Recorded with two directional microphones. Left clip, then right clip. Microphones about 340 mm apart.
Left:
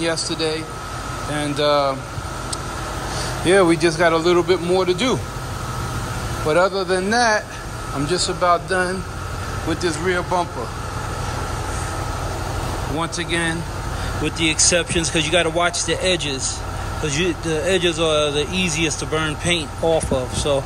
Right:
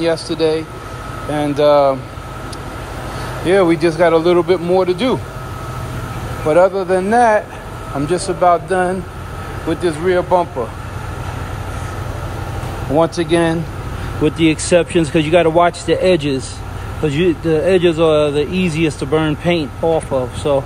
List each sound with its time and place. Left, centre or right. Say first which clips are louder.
0.0 s a man's voice: right 6 dB; centre
3.4 s a man's voice: right 2 dB; centre
6.5 s a man's voice: right 6 dB; centre
12.9 s speech: right 11 dB; centre